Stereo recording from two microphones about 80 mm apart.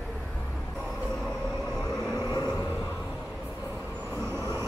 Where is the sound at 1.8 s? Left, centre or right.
Left.